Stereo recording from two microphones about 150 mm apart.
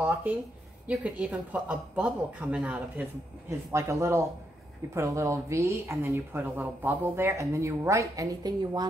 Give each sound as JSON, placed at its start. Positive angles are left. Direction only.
{"t": 0.0, "sound": "a woman's voice", "side_deg": -10}